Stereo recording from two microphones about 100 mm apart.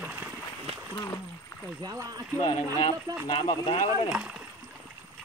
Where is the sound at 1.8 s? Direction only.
40° right (ahead or behind).